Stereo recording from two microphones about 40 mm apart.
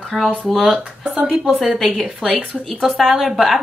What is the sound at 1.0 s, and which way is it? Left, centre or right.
Speech, right.